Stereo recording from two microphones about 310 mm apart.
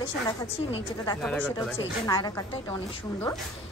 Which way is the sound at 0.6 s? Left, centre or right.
Centre.